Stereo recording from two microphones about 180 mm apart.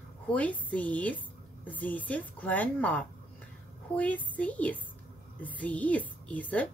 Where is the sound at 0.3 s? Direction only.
10° left (ahead or behind).